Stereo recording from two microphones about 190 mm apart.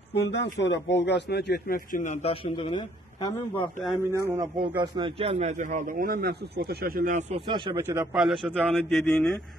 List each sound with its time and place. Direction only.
0.1 s speech: 60° left (ahead or behind)
2.2 s a man's voice: 25° left (ahead or behind)
3.9 s a man's voice: 15° right (ahead or behind)
4.6 s a man's voice: 25° right (ahead or behind)
7.4 s speech: 25° right (ahead or behind)
8.1 s a man's voice: centre (ahead or behind)